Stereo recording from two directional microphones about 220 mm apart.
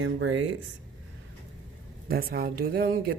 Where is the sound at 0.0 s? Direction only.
60° right (ahead or behind).